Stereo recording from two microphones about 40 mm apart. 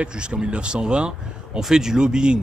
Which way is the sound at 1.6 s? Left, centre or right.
Centre.